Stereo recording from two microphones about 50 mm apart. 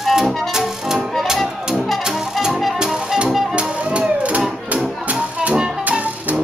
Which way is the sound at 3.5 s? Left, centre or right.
Right.